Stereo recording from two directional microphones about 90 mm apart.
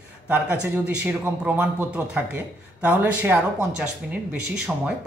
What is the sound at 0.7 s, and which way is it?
Speech, 15° right (ahead or behind).